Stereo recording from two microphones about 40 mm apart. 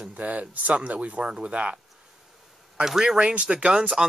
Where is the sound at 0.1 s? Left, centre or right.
Right.